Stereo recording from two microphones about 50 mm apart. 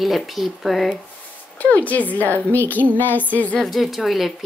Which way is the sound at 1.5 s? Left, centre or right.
Left.